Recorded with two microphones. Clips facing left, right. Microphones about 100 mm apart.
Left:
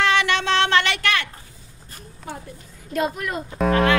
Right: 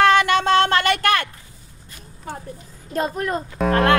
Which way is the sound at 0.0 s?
45° right (ahead or behind).